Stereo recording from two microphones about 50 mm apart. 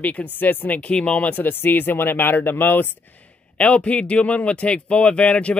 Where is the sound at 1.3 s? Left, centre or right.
Left.